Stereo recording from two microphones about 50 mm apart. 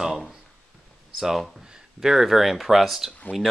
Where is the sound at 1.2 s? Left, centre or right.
Centre.